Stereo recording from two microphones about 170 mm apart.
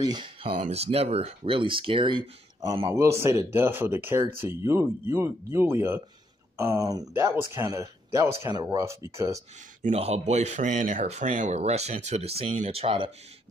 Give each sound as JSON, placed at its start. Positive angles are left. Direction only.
{"t": 0.0, "sound": "speech", "side_deg": -25}
{"t": 2.9, "sound": "a man's voice", "side_deg": -15}
{"t": 9.8, "sound": "speech", "side_deg": -40}